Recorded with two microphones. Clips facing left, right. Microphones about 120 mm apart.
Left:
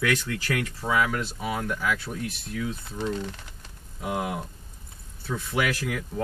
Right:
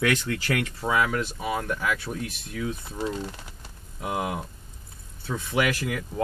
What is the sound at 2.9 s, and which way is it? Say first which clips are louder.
Speech: left 2 dB; 5° right (ahead or behind).